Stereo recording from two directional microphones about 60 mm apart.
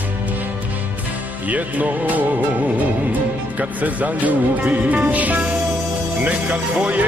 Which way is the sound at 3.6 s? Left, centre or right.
Right.